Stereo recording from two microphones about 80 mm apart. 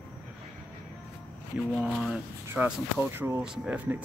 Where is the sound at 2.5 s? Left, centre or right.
Right.